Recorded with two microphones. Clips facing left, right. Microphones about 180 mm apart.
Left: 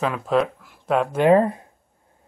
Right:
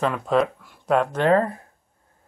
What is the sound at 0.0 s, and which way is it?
Speech, centre (ahead or behind).